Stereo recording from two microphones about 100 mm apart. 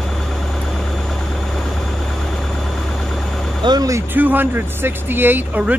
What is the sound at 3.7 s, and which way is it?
Speech, 35° right (ahead or behind).